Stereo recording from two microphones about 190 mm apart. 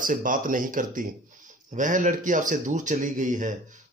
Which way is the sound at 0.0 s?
45° right (ahead or behind).